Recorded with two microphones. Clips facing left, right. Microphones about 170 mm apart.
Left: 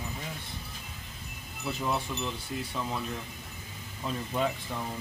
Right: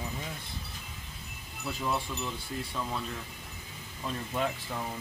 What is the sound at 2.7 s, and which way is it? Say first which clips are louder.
Speech: left 1 dB; 5° left (ahead or behind).